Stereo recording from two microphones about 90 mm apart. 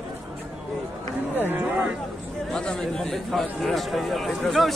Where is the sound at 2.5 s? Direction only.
5° left (ahead or behind).